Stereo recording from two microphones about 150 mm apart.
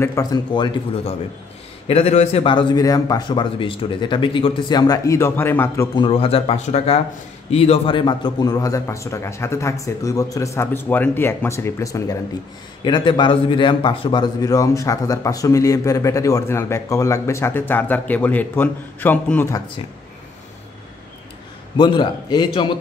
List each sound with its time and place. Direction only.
0.0 s speech: 25° left (ahead or behind)
1.9 s a man's voice: 45° left (ahead or behind); by 5.9 s 15° left (ahead or behind)
5.9 s a man's voice: 40° left (ahead or behind); by 19.5 s 10° left (ahead or behind)
21.7 s a man's voice: 30° left (ahead or behind)